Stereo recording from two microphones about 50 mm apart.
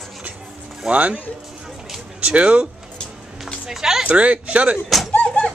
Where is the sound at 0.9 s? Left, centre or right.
Right.